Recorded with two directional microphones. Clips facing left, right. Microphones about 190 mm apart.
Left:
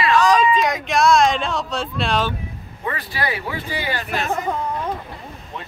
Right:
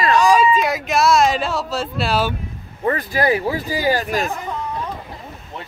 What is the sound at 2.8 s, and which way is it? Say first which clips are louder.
Speech: right 7 dB; 45° right (ahead or behind).